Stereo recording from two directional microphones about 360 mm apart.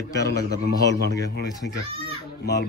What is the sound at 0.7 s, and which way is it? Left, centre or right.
Speech, left.